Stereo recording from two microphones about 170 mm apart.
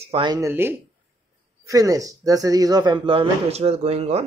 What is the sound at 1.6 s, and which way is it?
Speech, 20° right (ahead or behind).